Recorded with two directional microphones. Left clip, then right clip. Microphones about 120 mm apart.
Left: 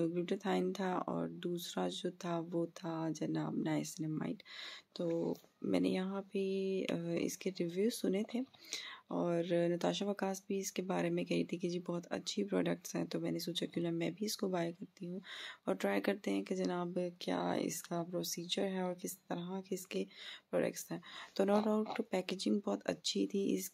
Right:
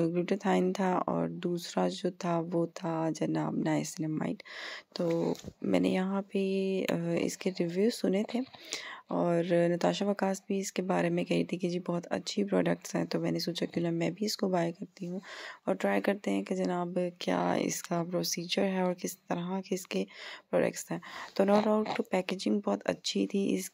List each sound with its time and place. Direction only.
0.0 s speech: 30° right (ahead or behind)
15.6 s speech: 15° right (ahead or behind)